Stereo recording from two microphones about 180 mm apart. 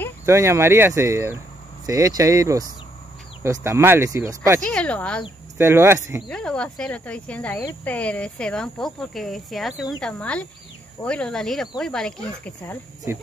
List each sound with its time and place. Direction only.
0.3 s speech: 15° right (ahead or behind)
4.6 s speech: 5° left (ahead or behind)
5.6 s speech: 15° right (ahead or behind)
6.2 s speech: 5° left (ahead or behind)